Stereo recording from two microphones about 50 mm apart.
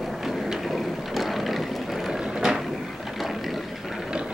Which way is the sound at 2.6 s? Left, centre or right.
Centre.